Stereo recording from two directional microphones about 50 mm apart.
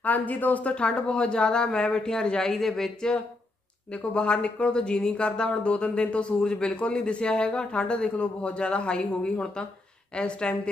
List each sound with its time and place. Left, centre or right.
0.0 s speech: left; by 3.2 s centre
3.9 s speech: left